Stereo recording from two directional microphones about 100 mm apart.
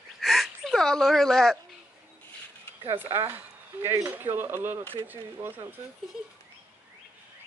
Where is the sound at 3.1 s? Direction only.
25° right (ahead or behind).